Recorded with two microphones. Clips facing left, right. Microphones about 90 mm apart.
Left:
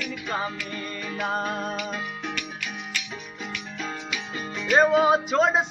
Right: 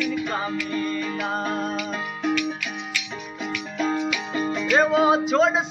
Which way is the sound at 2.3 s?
40° left (ahead or behind).